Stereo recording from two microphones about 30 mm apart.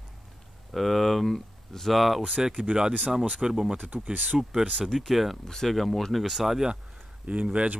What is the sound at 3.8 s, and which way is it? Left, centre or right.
Speech, right.